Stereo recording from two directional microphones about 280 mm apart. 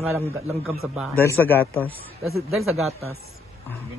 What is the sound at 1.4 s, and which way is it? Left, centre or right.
A man's voice, centre.